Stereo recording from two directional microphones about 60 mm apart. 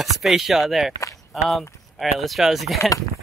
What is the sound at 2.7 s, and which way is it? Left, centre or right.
Speech, left.